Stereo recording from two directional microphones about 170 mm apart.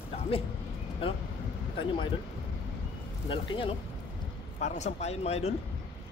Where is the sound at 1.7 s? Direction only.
30° left (ahead or behind).